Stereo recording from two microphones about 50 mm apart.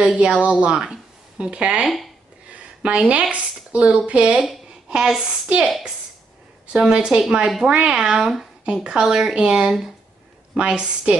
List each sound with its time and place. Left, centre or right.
0.2 s speech: right
2.5 s a sound: right
3.1 s a woman's voice: right
5.7 s a woman's voice: centre
6.7 s a woman's voice: centre